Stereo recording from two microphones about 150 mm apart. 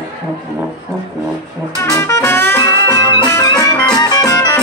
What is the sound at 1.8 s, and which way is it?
Music, 20° left (ahead or behind).